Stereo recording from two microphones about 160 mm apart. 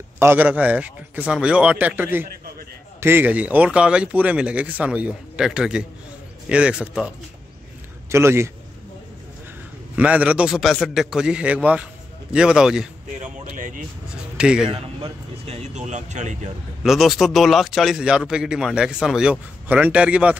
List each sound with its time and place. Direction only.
0.2 s speech: 10° right (ahead or behind)
9.9 s speech: 10° right (ahead or behind)
13.2 s speech: 55° right (ahead or behind)
14.3 s a man's voice: 5° right (ahead or behind)
14.7 s speech: 35° right (ahead or behind)
16.8 s speech: centre (ahead or behind)